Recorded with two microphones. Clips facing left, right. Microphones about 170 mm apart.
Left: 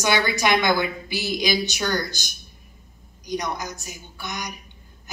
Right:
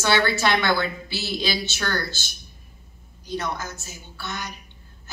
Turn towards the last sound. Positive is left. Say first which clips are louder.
# left 1 dB
turn(degrees=15)  # may be behind; listen again after turning